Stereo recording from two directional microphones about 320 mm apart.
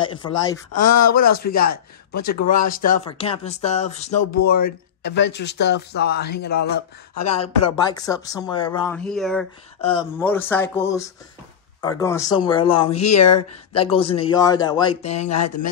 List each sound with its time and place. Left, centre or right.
0.1 s speech: centre
0.7 s speech: left
1.3 s speech: left
7.2 s speech: centre
8.9 s speech: centre
9.8 s speech: centre
13.0 s speech: left
13.7 s speech: centre
15.1 s speech: left